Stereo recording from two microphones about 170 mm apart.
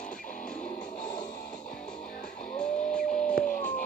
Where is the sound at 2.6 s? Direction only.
5° left (ahead or behind).